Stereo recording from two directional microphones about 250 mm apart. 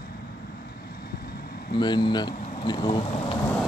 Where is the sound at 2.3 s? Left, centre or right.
Left.